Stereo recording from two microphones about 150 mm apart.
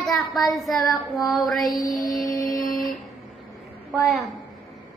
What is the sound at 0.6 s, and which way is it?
A child's voice, centre (ahead or behind).